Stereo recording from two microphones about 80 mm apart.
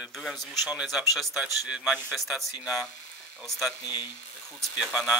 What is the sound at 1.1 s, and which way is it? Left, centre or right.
Speech, centre.